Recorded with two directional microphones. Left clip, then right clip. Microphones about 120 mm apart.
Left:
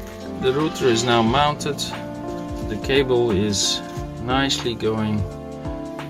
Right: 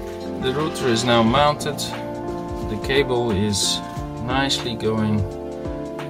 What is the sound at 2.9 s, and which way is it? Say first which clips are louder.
Speech: left 2 dB; 10° left (ahead or behind).